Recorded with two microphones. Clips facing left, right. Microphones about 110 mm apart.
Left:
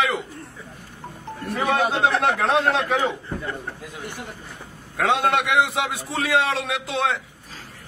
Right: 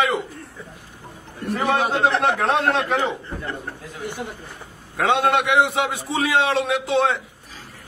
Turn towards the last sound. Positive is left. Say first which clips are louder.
# right 4 dB
turn(degrees=0)  # may be behind; listen again after turning